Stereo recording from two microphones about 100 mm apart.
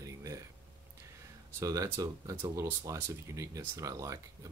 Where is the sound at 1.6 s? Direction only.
35° right (ahead or behind).